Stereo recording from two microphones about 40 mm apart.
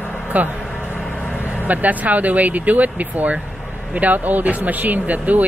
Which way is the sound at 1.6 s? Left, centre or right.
Right.